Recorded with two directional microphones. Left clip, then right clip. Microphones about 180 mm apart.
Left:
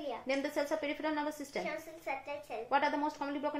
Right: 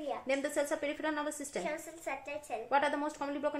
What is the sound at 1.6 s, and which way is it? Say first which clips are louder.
Speech: right 1 dB; 25° right (ahead or behind).